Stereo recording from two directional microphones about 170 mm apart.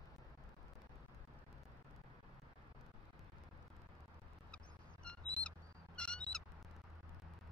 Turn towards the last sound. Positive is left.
turn(degrees=5)  # may be behind; listen again after turning